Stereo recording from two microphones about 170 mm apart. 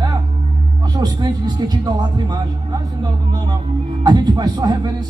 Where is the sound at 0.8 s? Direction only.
25° right (ahead or behind).